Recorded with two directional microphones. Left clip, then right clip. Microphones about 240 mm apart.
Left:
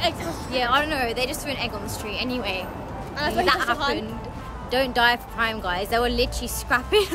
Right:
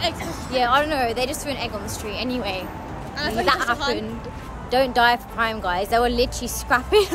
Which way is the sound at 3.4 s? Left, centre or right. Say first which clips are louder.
Right 3 dB; centre.